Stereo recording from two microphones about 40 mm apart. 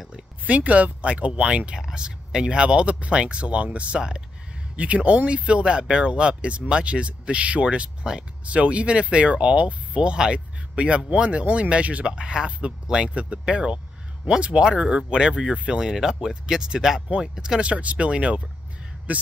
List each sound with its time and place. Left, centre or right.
0.5 s speech: right
8.5 s speech: right
10.1 s speech: right
13.1 s speech: right
15.8 s speech: centre; by 19.2 s right